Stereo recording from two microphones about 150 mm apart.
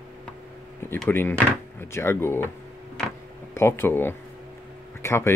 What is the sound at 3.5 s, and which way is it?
Speech, 15° left (ahead or behind).